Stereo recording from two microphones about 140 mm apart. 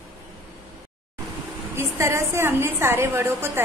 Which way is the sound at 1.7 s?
20° right (ahead or behind).